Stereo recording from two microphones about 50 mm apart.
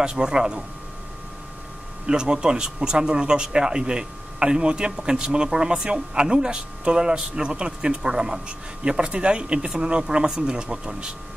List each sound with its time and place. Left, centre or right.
0.0 s speech: centre
2.0 s speech: centre